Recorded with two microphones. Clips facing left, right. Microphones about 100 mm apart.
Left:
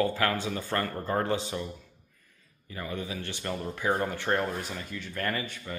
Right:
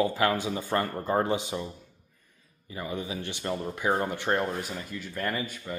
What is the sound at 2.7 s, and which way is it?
Speech, 15° right (ahead or behind).